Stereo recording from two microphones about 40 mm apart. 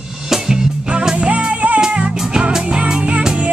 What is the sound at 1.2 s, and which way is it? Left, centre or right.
Music, right.